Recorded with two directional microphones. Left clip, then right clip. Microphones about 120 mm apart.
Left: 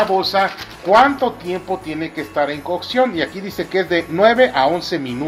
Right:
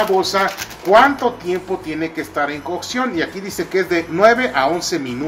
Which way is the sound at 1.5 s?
55° left (ahead or behind).